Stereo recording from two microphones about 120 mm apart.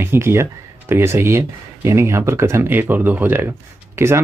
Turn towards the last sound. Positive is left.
turn(degrees=-20)  # may be behind; listen again after turning